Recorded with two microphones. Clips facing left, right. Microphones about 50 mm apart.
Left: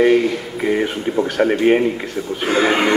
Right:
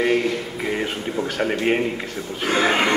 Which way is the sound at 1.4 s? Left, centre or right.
Centre.